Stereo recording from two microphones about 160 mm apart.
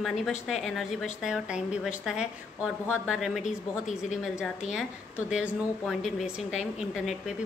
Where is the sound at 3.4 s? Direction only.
50° left (ahead or behind).